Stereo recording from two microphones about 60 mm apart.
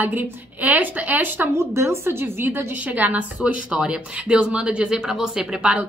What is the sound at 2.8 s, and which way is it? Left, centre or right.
Speech, right.